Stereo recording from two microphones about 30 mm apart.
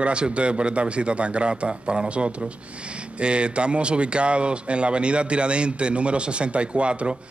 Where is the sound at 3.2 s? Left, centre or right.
Right.